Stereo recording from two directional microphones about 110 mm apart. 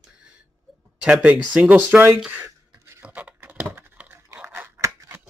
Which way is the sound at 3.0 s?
15° right (ahead or behind).